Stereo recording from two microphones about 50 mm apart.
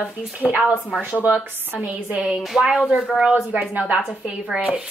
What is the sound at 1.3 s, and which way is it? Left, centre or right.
Speech, right.